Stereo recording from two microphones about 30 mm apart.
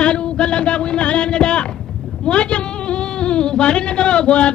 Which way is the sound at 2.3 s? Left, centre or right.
Left.